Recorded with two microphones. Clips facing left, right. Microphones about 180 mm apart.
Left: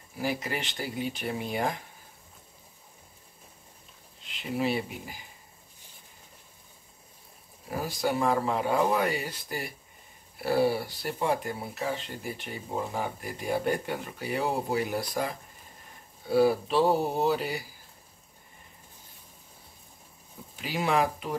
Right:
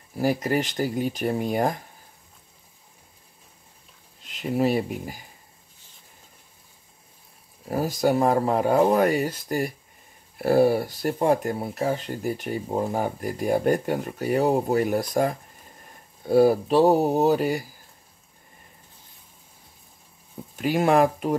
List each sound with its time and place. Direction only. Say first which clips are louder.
0.2 s speech: right 8 dB; 45° right (ahead or behind)
4.2 s speech: right 7 dB; 45° right (ahead or behind)
7.6 s speech: right 7 dB; 45° right (ahead or behind)
20.5 s speech: right 7 dB; 50° right (ahead or behind)